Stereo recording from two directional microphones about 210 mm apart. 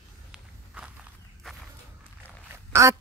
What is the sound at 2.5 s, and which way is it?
Quack, 15° right (ahead or behind).